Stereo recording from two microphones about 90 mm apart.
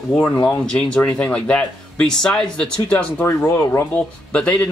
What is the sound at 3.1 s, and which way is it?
Speech, 25° left (ahead or behind).